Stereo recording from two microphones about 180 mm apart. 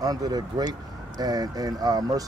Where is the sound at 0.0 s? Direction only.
20° right (ahead or behind).